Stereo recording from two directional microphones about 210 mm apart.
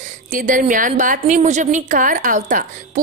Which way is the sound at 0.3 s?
40° right (ahead or behind).